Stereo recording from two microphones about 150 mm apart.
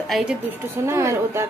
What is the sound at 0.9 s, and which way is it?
Speech, 20° right (ahead or behind).